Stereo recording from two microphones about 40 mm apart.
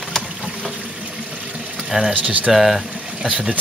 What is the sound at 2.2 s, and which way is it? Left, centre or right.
Speech, right.